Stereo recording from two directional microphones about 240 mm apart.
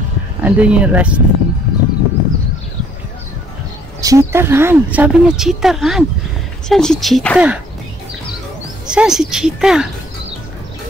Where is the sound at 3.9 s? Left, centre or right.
Centre.